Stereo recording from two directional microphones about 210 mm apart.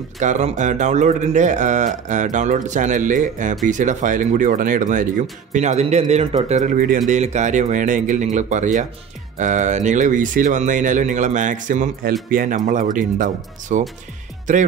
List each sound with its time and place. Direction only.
0.2 s speech: 35° right (ahead or behind)